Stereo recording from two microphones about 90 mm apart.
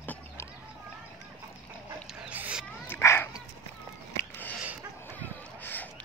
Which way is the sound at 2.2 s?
15° right (ahead or behind).